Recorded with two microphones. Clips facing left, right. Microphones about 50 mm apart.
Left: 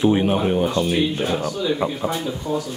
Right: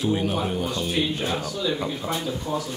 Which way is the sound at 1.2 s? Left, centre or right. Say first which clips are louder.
Left 4 dB; centre.